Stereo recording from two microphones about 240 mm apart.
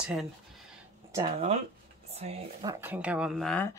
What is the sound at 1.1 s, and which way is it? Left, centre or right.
Speech, right.